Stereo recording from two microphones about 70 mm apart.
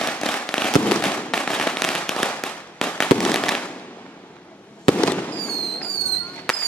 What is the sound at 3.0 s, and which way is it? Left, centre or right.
Fireworks, centre.